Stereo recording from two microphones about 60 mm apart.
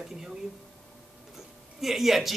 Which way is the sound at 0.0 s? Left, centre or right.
Centre.